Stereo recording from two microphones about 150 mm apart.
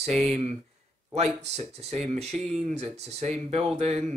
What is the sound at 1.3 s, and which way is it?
Speech, 45° right (ahead or behind).